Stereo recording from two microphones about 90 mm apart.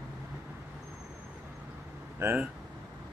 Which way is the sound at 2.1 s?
25° right (ahead or behind).